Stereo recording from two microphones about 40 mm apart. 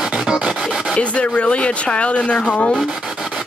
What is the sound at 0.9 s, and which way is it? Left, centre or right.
Speech, left.